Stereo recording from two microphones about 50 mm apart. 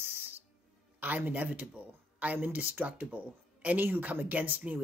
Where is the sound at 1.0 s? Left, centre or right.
Right.